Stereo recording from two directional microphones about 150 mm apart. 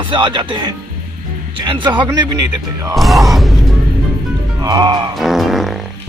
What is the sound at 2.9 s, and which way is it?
Music, centre (ahead or behind).